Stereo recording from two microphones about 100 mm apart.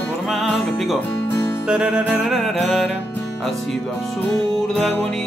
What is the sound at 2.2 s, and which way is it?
Music, centre (ahead or behind).